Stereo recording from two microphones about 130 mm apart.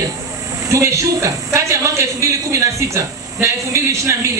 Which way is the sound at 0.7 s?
25° right (ahead or behind).